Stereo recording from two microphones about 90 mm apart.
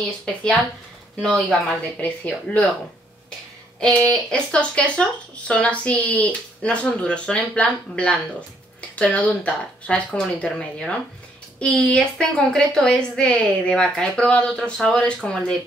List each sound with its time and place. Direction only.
0.2 s a woman's voice: 10° left (ahead or behind)
4.1 s a woman's voice: 10° left (ahead or behind)